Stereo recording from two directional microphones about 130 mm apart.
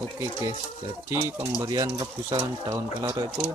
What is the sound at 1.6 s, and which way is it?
Speech, 30° right (ahead or behind).